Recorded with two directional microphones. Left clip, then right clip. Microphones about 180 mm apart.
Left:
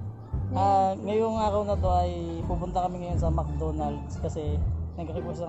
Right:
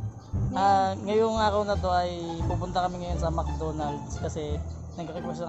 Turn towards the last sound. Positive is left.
turn(degrees=0)  # may be behind; listen again after turning